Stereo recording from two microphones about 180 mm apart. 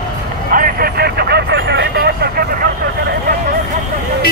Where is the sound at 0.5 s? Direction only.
50° right (ahead or behind).